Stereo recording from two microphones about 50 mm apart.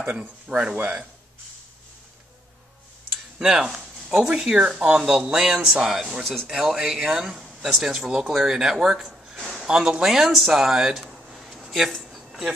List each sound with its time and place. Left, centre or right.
0.0 s speech: right
3.3 s speech: centre
6.2 s speech: centre
6.5 s speech: centre
12.0 s a sound: centre